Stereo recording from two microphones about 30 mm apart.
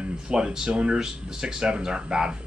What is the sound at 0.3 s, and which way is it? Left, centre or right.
Speech, right.